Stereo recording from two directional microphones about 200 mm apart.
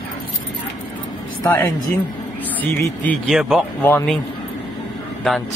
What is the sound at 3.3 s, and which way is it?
Speech, 5° right (ahead or behind).